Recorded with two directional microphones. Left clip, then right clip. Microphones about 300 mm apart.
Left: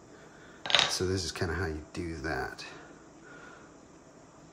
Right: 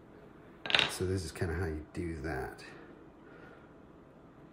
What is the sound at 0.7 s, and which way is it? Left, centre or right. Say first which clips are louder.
Speech: left 3 dB; centre.